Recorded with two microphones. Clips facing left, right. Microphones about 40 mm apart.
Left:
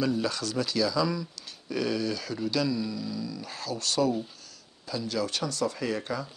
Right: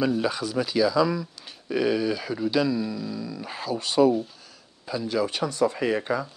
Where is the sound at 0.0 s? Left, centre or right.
Centre.